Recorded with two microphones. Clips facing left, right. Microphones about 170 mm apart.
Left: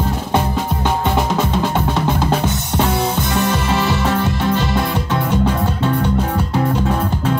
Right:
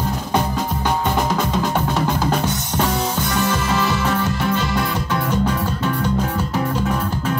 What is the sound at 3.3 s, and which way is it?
Music, 30° left (ahead or behind).